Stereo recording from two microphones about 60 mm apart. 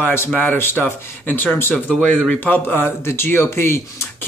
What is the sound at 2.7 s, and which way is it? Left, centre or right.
Speech, left.